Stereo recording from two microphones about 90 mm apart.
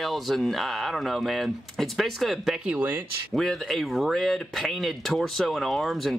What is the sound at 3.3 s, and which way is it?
Speech, 5° left (ahead or behind).